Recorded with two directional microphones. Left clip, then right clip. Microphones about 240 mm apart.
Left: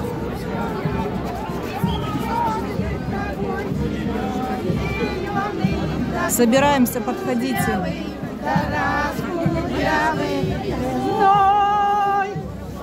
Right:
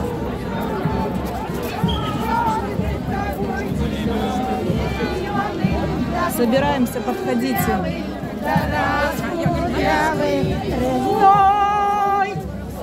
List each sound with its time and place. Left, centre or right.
6.4 s a woman's voice: left
11.2 s music: centre